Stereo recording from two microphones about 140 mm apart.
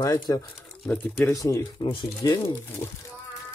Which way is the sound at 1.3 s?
25° left (ahead or behind).